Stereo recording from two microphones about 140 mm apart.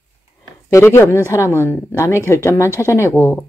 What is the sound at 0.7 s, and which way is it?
Speech, 15° left (ahead or behind).